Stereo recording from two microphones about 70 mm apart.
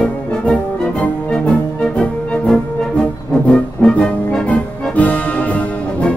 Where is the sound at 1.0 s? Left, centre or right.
Centre.